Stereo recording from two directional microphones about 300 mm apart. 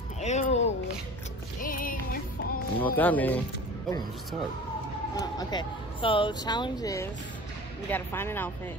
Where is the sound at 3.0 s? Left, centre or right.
Centre.